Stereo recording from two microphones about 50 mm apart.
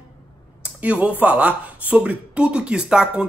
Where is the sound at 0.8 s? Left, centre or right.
Right.